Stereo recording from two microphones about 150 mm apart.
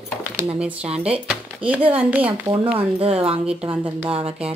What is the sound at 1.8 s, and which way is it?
Speech, 40° right (ahead or behind).